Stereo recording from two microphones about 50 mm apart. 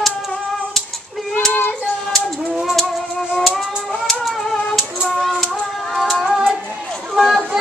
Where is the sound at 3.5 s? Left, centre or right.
Centre.